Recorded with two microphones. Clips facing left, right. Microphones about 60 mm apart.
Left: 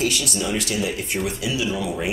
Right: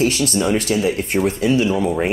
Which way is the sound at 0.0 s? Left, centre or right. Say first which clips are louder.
Right 6 dB; right.